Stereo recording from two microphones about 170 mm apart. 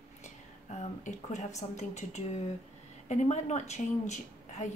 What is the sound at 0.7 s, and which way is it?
A woman's voice, 40° left (ahead or behind).